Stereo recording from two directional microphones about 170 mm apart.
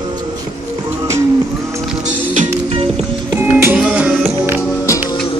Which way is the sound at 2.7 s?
35° right (ahead or behind).